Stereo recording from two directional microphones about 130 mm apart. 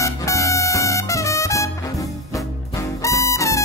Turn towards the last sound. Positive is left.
turn(degrees=25)  # may be behind; listen again after turning